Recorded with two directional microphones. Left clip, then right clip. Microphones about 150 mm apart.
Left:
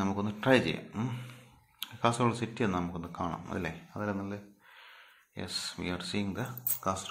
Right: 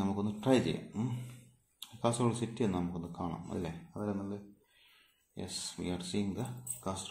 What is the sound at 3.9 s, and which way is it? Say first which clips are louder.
Speech: left 3 dB; 30° left (ahead or behind).